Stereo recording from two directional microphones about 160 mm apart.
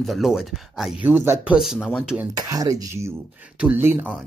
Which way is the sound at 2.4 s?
20° right (ahead or behind).